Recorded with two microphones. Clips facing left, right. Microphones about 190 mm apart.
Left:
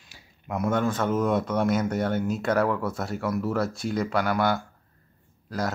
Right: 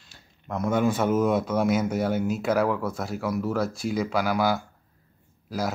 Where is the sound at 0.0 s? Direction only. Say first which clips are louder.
Left 1 dB; 10° left (ahead or behind).